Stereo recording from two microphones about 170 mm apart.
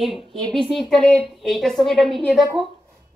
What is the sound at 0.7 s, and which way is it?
A woman's voice, centre (ahead or behind).